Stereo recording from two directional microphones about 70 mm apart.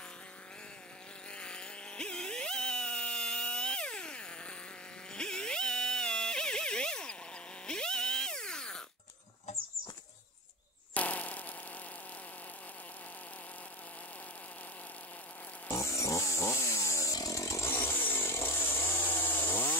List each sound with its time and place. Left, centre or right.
1.3 s chainsaw: centre
5.1 s music: centre
11.0 s a sound: left
15.7 s chainsaw: left
17.1 s chainsaw: left